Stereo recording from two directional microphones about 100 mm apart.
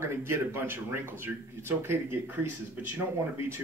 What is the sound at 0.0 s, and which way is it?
Speech, 25° right (ahead or behind).